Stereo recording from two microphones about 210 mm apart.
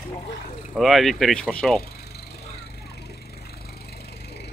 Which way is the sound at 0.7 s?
Centre (ahead or behind).